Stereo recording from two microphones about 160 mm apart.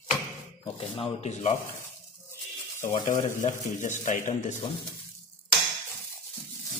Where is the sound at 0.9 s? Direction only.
45° left (ahead or behind).